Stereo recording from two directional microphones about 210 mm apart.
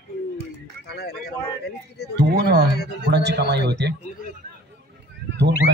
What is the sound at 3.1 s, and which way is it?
Speech, 55° right (ahead or behind).